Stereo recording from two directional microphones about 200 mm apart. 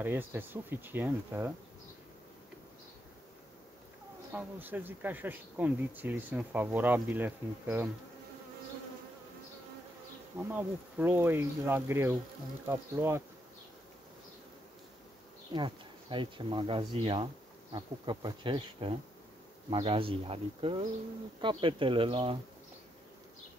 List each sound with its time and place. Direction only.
0.0 s speech: 10° right (ahead or behind)
4.3 s speech: 10° right (ahead or behind)
10.5 s speech: 10° right (ahead or behind)
15.5 s speech: 25° right (ahead or behind)